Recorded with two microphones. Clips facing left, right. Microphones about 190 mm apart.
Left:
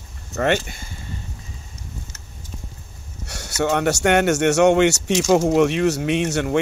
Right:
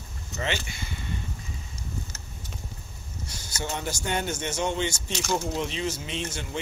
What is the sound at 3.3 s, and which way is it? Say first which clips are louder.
Speech: left 13 dB; 70° left (ahead or behind).